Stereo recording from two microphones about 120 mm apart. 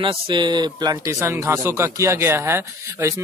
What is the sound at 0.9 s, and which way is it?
Speech, 20° right (ahead or behind).